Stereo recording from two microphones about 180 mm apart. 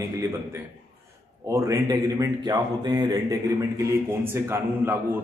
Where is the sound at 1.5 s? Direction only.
20° right (ahead or behind).